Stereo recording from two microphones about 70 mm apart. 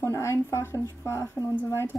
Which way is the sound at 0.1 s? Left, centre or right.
Left.